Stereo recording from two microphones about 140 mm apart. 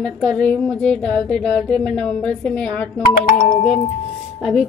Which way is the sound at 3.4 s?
90° left.